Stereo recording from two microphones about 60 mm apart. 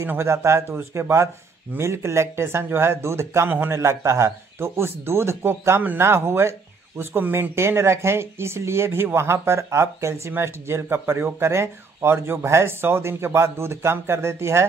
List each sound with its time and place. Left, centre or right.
0.0 s speech: right
3.4 s speech: right
3.7 s speech: right
7.5 s speech: right